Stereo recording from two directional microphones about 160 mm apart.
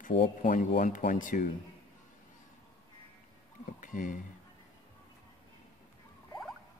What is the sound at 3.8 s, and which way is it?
Speech, 55° left (ahead or behind).